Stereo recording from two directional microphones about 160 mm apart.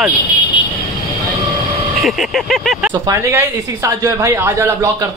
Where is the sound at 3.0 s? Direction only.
15° right (ahead or behind).